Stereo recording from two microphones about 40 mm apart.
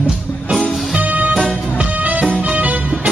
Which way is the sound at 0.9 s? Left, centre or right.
Right.